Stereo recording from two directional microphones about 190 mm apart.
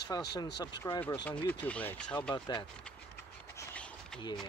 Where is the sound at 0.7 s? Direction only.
20° left (ahead or behind).